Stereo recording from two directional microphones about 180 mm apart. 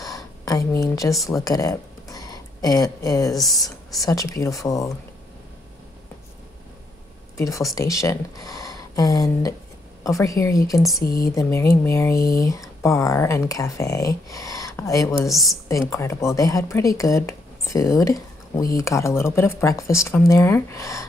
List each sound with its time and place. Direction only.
0.0 s a sound: 20° left (ahead or behind)
1.4 s speech: 20° left (ahead or behind)
3.4 s speech: centre (ahead or behind)
4.0 s speech: 20° left (ahead or behind)
7.3 s speech: 15° left (ahead or behind)
15.2 s a woman's voice: centre (ahead or behind)
15.7 s speech: 15° left (ahead or behind)